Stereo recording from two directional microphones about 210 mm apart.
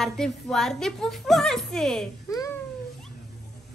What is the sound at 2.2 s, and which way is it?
Babbling, 15° left (ahead or behind).